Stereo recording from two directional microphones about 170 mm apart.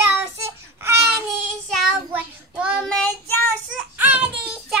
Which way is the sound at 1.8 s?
10° right (ahead or behind).